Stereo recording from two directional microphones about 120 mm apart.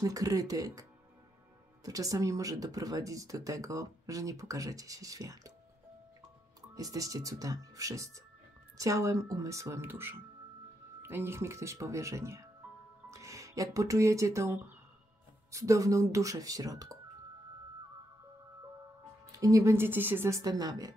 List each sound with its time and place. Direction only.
0.0 s speech: 30° right (ahead or behind)
6.7 s speech: 30° right (ahead or behind)
19.3 s speech: 30° right (ahead or behind)